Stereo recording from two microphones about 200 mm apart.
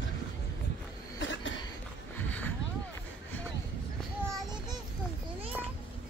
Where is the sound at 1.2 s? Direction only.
65° left (ahead or behind).